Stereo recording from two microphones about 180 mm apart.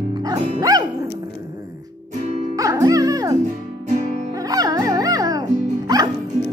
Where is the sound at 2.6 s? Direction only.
20° right (ahead or behind).